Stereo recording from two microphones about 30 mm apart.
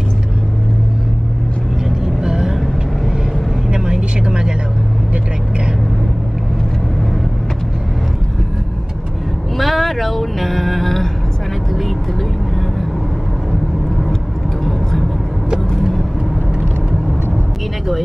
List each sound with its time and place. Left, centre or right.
2.0 s vehicle: centre
3.7 s vehicle: right
9.6 s a sound: centre
13.5 s vehicle: centre